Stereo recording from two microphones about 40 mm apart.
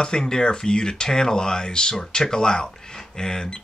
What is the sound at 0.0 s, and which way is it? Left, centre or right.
Speech, centre.